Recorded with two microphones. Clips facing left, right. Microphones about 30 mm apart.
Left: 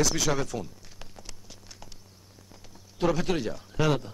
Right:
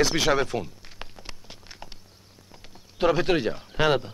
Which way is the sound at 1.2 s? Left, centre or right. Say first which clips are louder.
Right 4 dB; right.